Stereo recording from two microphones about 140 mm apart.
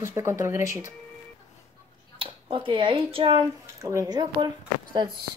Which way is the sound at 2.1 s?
40° right (ahead or behind).